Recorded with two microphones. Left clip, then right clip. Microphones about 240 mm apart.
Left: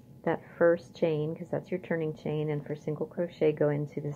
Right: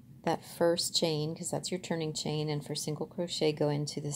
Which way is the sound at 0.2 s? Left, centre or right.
Right.